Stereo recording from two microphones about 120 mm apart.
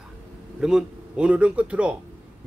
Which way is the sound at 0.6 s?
5° right (ahead or behind).